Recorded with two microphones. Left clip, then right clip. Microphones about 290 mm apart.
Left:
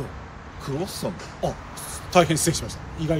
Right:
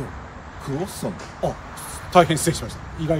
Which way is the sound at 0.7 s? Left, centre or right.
Centre.